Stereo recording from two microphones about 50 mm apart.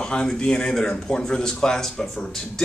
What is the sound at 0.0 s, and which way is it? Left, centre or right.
Speech, centre.